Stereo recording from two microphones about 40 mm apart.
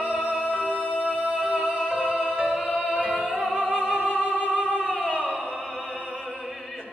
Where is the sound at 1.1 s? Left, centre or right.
Right.